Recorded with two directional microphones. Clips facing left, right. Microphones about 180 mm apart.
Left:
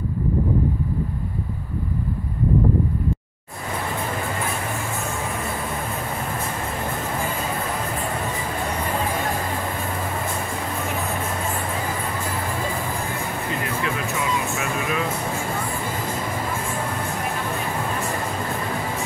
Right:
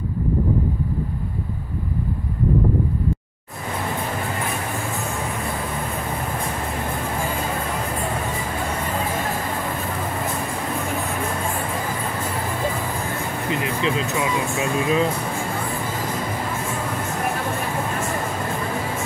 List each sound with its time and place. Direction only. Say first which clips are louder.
13.5 s music: right 5 dB; 20° right (ahead or behind)